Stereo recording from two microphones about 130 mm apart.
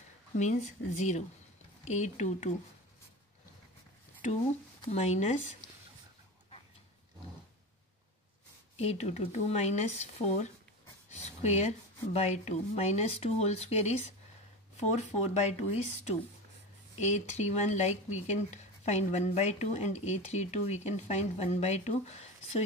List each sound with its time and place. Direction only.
0.4 s speech: 65° left (ahead or behind)
4.9 s speech: 60° left (ahead or behind)
8.7 s speech: 55° left (ahead or behind)
17.0 s speech: 60° left (ahead or behind)